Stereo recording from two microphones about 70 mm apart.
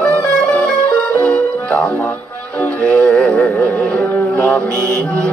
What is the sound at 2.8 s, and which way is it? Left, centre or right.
Music, centre.